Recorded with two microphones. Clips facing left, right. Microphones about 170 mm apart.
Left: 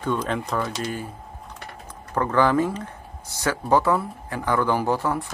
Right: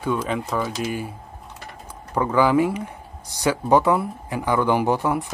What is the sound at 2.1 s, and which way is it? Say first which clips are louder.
Speech: right 2 dB; 10° right (ahead or behind).